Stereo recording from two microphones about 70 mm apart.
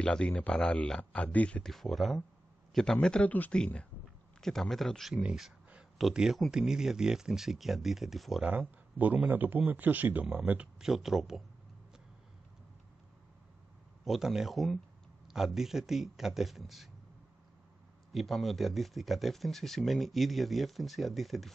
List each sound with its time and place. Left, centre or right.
0.0 s a man's voice: centre
1.6 s a man's voice: centre
4.4 s speech: centre
8.5 s speech: right
10.8 s speech: centre
14.0 s speech: centre
18.1 s speech: centre